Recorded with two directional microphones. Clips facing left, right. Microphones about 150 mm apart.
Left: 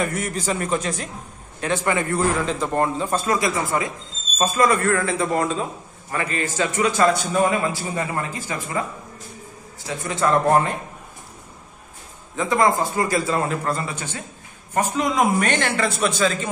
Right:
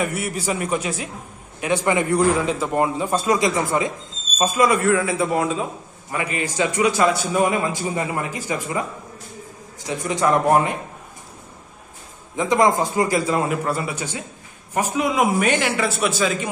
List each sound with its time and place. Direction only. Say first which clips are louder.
0.0 s a man's voice: even; 10° right (ahead or behind)
9.8 s a man's voice: right 2 dB; 15° right (ahead or behind)
12.4 s a man's voice: right 2 dB; 15° right (ahead or behind)